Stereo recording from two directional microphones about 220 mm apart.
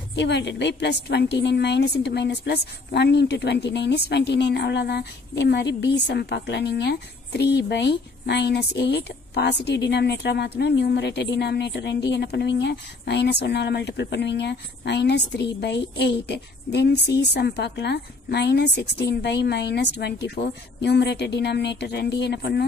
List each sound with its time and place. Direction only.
0.1 s a woman's voice: 50° left (ahead or behind)